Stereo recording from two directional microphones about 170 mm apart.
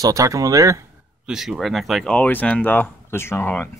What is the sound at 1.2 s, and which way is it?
Speech, 5° right (ahead or behind).